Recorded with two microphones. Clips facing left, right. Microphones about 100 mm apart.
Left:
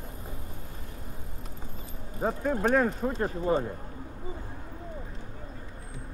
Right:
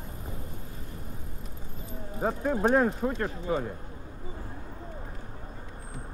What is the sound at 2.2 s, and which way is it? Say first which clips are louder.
Speech: even; 5° right (ahead or behind).